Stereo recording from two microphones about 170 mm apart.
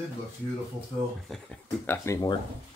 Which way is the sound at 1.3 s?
10° left (ahead or behind).